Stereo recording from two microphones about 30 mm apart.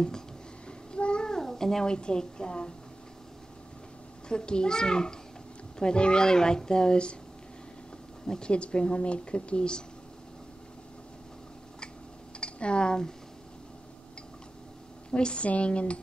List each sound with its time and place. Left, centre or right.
0.7 s a sound: left
1.4 s cat: centre
1.9 s speech: left
4.3 s speech: left
8.3 s speech: left
12.4 s speech: left
15.0 s speech: left
15.4 s speech: left